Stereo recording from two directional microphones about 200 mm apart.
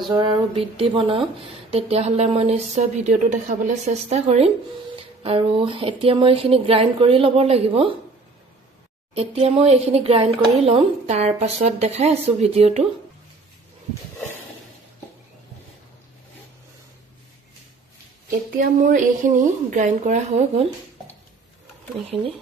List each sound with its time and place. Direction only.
0.0 s speech: 25° right (ahead or behind)
9.1 s speech: 30° right (ahead or behind)
18.6 s speech: 40° right (ahead or behind)